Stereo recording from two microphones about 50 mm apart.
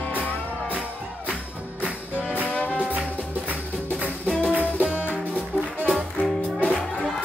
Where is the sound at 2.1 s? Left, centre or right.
Left.